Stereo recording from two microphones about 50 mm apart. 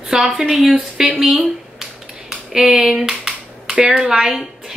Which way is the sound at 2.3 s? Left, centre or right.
Centre.